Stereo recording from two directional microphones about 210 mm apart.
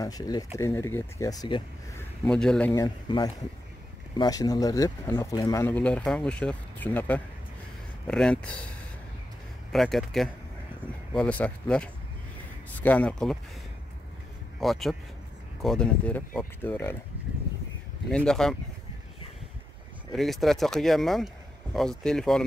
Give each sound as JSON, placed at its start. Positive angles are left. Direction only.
{"t": 0.0, "sound": "speech", "side_deg": 20}
{"t": 2.2, "sound": "speech", "side_deg": 5}
{"t": 2.7, "sound": "speech", "side_deg": 20}
{"t": 9.7, "sound": "speech", "side_deg": 0}
{"t": 14.6, "sound": "speech", "side_deg": 0}
{"t": 18.1, "sound": "speech", "side_deg": 5}
{"t": 20.1, "sound": "speech", "side_deg": 0}